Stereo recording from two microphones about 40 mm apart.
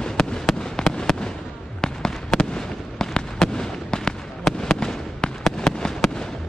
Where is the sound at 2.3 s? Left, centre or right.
Centre.